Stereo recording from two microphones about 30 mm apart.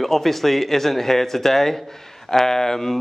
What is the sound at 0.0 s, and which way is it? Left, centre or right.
Speech, centre.